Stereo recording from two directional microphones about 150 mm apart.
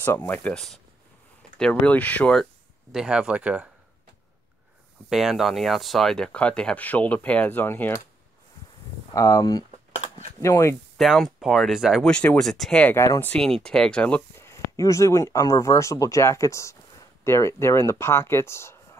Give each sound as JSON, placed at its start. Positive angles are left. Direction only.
{"t": 0.0, "sound": "speech", "side_deg": 15}
{"t": 2.9, "sound": "speech", "side_deg": -5}
{"t": 5.1, "sound": "speech", "side_deg": 0}
{"t": 9.1, "sound": "speech", "side_deg": 20}
{"t": 11.0, "sound": "speech", "side_deg": 0}
{"t": 13.3, "sound": "speech", "side_deg": 5}